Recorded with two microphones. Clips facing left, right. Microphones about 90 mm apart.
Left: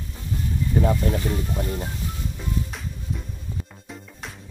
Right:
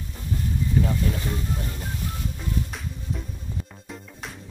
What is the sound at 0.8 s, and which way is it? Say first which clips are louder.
Speech: left 4 dB; 40° left (ahead or behind).